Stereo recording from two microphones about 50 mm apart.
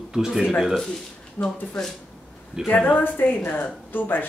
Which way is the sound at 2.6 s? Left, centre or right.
Centre.